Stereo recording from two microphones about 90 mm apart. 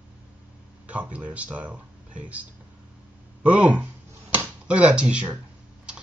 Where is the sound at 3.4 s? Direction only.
15° right (ahead or behind).